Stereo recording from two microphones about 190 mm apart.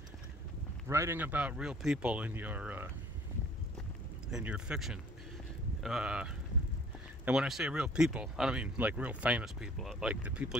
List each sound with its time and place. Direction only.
0.8 s speech: 15° right (ahead or behind)
4.3 s speech: 5° right (ahead or behind)